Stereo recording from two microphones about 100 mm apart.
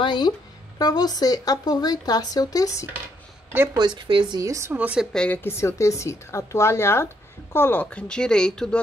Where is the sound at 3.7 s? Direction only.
50° right (ahead or behind).